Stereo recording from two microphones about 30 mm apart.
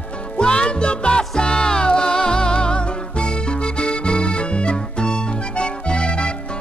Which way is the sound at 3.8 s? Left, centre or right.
Left.